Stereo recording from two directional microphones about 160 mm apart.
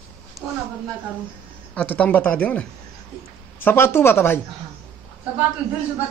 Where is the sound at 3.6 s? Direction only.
15° left (ahead or behind).